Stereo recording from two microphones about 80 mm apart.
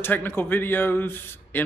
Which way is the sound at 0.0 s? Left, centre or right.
Left.